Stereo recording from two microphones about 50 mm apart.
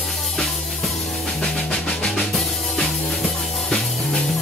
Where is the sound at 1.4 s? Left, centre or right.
Centre.